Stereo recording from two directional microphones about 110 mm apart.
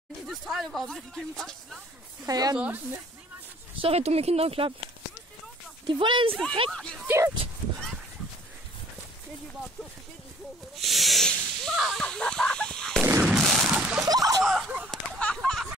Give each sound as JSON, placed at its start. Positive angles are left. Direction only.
{"t": 0.3, "sound": "speech", "side_deg": 0}
{"t": 2.2, "sound": "speech", "side_deg": -35}
{"t": 2.5, "sound": "speech", "side_deg": -15}
{"t": 3.8, "sound": "speech", "side_deg": -70}
{"t": 5.9, "sound": "speech", "side_deg": -50}
{"t": 6.7, "sound": "speech", "side_deg": 5}
{"t": 7.1, "sound": "speech", "side_deg": -20}
{"t": 10.8, "sound": "speech", "side_deg": 0}
{"t": 12.0, "sound": "fowl", "side_deg": 5}
{"t": 13.2, "sound": "a sound", "side_deg": 0}
{"t": 14.0, "sound": "slap", "side_deg": -35}
{"t": 14.4, "sound": "a sound", "side_deg": 0}
{"t": 15.1, "sound": "a sound", "side_deg": 10}